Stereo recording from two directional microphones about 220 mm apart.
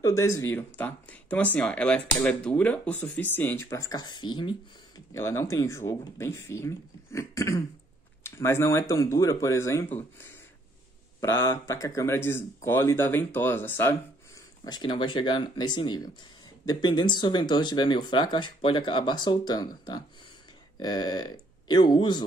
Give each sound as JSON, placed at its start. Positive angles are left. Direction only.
{"t": 0.0, "sound": "speech", "side_deg": 15}
{"t": 11.1, "sound": "speech", "side_deg": 10}